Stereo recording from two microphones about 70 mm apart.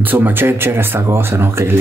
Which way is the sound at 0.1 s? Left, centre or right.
Right.